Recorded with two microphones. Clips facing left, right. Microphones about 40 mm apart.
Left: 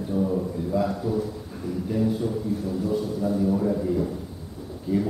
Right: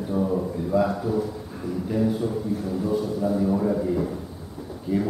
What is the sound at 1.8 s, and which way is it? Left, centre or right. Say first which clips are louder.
Speech: right 1 dB; centre.